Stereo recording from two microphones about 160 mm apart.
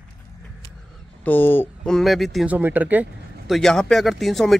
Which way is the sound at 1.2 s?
10° left (ahead or behind).